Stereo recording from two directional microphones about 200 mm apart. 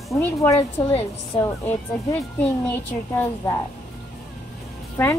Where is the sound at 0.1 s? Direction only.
15° left (ahead or behind).